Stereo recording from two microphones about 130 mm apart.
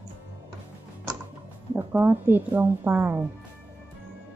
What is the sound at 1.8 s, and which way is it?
A woman's voice, 15° right (ahead or behind).